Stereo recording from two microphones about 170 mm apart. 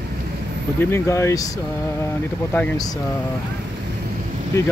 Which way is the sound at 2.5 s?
15° left (ahead or behind).